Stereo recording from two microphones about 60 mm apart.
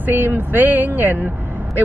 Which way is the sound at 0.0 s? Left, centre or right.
Right.